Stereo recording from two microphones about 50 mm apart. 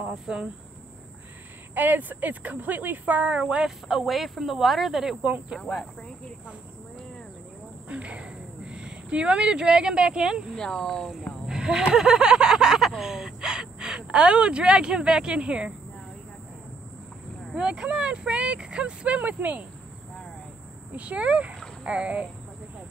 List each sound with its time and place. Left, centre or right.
0.1 s insect: centre
1.8 s speech: right; by 3.7 s centre
3.9 s speech: centre
5.5 s speech: left
7.9 s speech: right
10.5 s speech: centre
11.4 s a sound: centre
17.6 s speech: centre
20.9 s speech: right